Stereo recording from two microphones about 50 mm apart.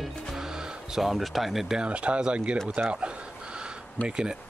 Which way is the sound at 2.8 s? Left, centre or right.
Right.